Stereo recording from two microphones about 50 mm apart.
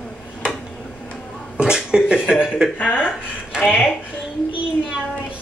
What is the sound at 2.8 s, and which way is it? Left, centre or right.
Speech, left.